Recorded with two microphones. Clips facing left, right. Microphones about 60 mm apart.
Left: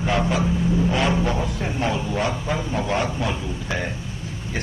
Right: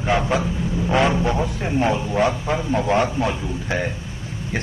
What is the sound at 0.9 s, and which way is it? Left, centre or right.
Speech, right.